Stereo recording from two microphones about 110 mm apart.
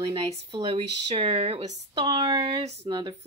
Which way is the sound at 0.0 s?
40° right (ahead or behind).